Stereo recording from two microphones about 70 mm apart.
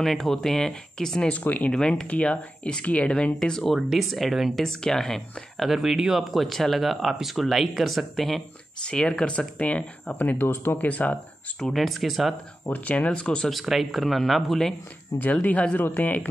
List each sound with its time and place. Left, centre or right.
0.0 s speech: centre
1.4 s speech: left
1.7 s speech: centre
8.8 s speech: centre
11.6 s speech: centre
12.6 s speech: left
13.5 s speech: centre
15.1 s speech: left
15.4 s speech: left